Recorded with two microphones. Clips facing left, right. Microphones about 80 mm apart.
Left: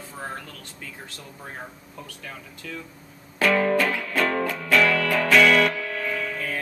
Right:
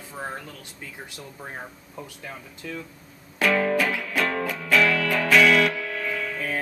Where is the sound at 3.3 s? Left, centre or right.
Centre.